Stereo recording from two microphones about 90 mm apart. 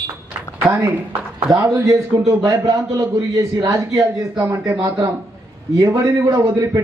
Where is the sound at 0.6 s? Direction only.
40° right (ahead or behind).